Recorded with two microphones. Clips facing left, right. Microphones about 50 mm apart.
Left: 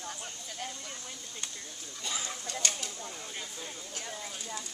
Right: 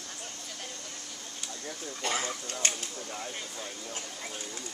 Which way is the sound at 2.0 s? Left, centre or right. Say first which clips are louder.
Right 6 dB; right.